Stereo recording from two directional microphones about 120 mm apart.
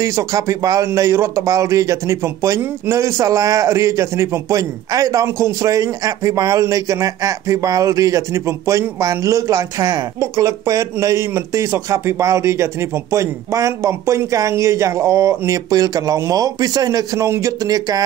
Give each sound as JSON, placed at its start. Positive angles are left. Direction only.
{"t": 0.0, "sound": "speech", "side_deg": -25}